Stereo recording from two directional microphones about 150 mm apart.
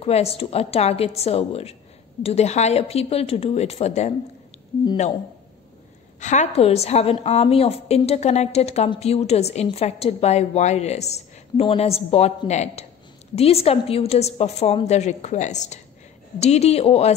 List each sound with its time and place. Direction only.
0.0 s a woman's voice: 40° left (ahead or behind)
6.1 s a woman's voice: 50° left (ahead or behind)